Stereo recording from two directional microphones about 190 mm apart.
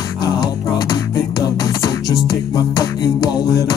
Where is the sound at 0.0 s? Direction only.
20° left (ahead or behind).